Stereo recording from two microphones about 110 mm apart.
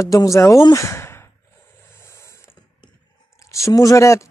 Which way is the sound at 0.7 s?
25° left (ahead or behind).